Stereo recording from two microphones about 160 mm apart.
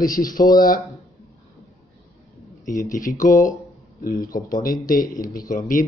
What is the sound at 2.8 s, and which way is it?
Speech, 55° left (ahead or behind).